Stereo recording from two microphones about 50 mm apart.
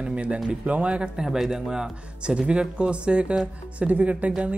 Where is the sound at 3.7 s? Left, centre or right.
Right.